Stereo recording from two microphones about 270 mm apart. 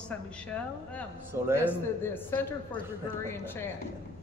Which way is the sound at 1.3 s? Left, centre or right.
Centre.